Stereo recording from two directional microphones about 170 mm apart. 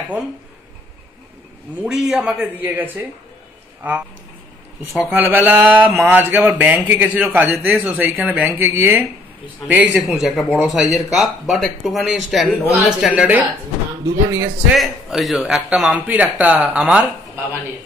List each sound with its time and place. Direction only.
1.8 s speech: 5° right (ahead or behind)
4.9 s a man's voice: 10° right (ahead or behind)
14.8 s a man's voice: centre (ahead or behind)